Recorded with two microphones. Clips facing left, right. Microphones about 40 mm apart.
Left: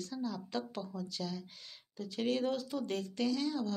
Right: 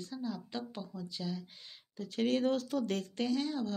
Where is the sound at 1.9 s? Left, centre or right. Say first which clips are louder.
Right 2 dB; right.